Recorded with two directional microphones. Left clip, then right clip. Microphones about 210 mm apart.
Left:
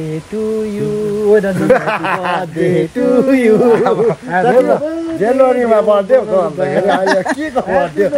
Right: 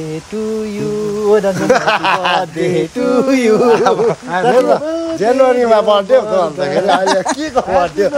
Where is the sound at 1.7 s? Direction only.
30° right (ahead or behind).